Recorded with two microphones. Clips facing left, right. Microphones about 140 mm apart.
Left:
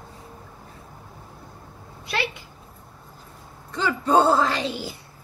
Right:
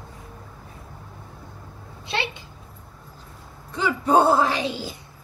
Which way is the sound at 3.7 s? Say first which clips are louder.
Right 1 dB; 10° right (ahead or behind).